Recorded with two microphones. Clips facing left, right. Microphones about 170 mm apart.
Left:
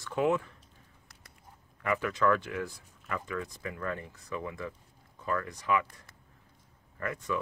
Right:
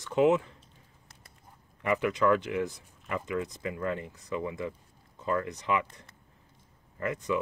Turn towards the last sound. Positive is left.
turn(degrees=-20)  # may be behind; listen again after turning